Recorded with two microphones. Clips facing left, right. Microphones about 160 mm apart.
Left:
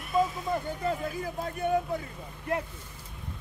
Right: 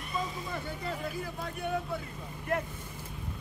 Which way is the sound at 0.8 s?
45° left (ahead or behind).